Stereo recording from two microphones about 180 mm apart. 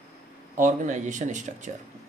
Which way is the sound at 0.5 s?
45° right (ahead or behind).